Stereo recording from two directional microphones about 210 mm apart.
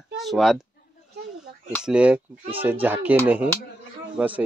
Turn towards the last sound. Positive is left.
turn(degrees=-5)  # may be behind; listen again after turning